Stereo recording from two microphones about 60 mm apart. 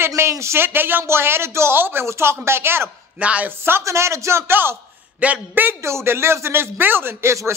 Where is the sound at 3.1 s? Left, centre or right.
Right.